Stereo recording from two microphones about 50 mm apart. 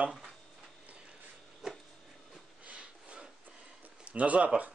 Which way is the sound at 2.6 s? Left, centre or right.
Right.